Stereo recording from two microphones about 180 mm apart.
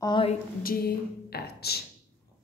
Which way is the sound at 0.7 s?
60° left (ahead or behind).